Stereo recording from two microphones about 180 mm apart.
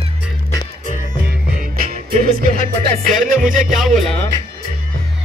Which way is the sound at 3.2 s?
50° right (ahead or behind).